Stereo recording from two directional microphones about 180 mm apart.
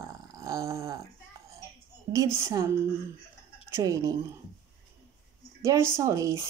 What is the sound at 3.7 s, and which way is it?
Speech, 20° right (ahead or behind).